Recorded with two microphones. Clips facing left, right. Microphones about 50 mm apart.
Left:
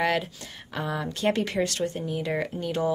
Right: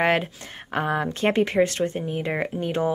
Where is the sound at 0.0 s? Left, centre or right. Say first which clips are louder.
Right 4 dB; right.